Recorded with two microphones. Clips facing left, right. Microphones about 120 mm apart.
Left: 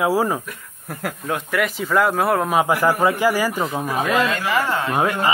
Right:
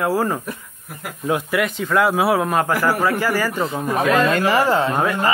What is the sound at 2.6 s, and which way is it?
Speech, 15° left (ahead or behind).